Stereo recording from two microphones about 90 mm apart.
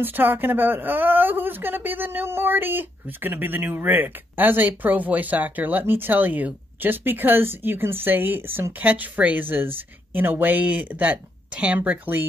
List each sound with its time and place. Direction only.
0.0 s speech: 20° right (ahead or behind)